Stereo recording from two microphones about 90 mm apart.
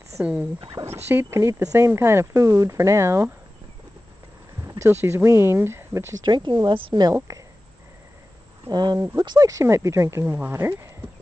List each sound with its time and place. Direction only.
0.2 s speech: 15° right (ahead or behind)
0.8 s speech: 30° right (ahead or behind)
1.9 s speech: 30° right (ahead or behind)
4.6 s speech: 25° right (ahead or behind)
6.2 s speech: 55° right (ahead or behind)
7.3 s a sound: 35° right (ahead or behind)
8.6 s speech: 50° right (ahead or behind)
9.5 s speech: 35° right (ahead or behind)
10.2 s speech: 20° right (ahead or behind)